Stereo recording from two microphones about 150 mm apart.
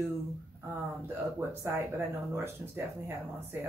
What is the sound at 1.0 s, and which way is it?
Speech, 15° right (ahead or behind).